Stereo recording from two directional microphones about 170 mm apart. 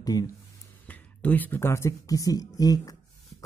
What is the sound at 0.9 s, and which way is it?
Speech, 10° left (ahead or behind).